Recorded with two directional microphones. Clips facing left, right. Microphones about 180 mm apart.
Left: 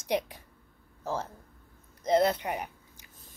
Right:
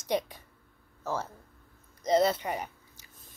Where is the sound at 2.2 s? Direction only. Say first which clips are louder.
Even; 15° left (ahead or behind).